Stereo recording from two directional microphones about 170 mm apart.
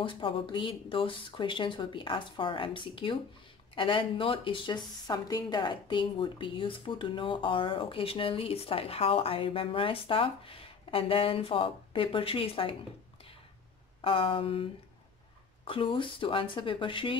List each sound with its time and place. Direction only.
0.0 s speech: 30° left (ahead or behind)
14.0 s speech: 30° left (ahead or behind)